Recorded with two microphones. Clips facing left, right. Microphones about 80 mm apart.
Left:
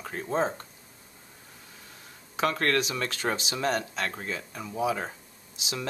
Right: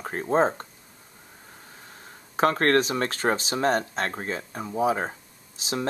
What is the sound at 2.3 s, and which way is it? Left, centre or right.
Speech, right.